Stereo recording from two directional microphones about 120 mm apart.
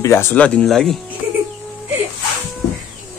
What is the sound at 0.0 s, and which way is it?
Speech, 20° left (ahead or behind).